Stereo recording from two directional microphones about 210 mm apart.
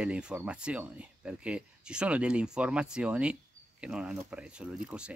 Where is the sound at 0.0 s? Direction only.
5° right (ahead or behind).